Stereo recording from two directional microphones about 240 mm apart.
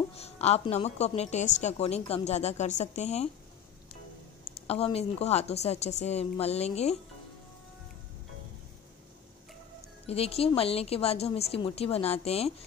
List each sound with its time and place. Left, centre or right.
0.1 s a woman's voice: left
4.6 s a woman's voice: left
10.0 s a woman's voice: left